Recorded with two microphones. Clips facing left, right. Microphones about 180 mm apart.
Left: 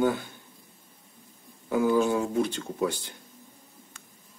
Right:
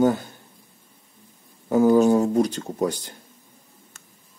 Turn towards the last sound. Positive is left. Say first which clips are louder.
# right 4 dB
turn(degrees=-40)  # may be behind; listen again after turning